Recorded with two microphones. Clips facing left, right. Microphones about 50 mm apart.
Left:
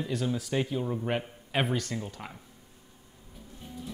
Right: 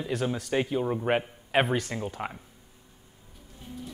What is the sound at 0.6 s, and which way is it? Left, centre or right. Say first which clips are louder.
A man's voice: right 4 dB; right.